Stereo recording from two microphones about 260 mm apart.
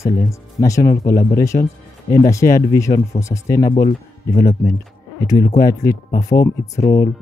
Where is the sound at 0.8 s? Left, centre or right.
Left.